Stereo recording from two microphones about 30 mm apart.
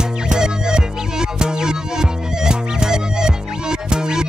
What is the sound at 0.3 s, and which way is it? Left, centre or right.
Music, right.